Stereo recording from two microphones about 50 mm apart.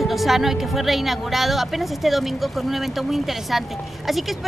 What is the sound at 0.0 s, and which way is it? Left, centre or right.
Speech, centre.